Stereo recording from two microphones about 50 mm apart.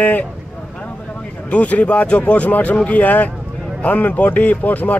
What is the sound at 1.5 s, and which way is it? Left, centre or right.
Speech, left.